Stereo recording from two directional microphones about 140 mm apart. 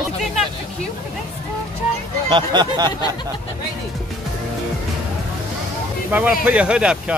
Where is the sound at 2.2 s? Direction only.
35° right (ahead or behind).